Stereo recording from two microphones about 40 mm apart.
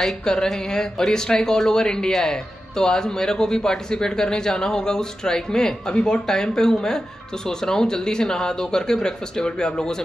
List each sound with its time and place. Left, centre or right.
0.2 s speech: centre